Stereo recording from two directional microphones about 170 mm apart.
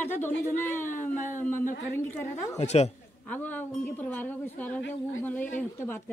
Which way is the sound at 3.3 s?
10° left (ahead or behind).